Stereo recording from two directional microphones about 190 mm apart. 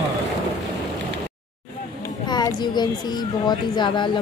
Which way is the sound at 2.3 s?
20° left (ahead or behind).